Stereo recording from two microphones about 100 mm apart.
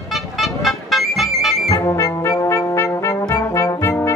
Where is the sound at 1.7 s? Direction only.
30° left (ahead or behind).